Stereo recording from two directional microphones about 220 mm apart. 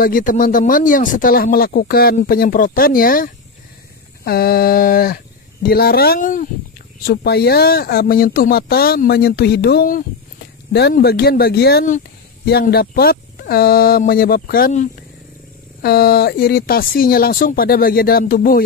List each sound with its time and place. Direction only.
0.0 s speech: 40° left (ahead or behind)